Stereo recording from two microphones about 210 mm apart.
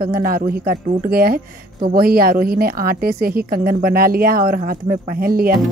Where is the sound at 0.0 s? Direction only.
40° right (ahead or behind).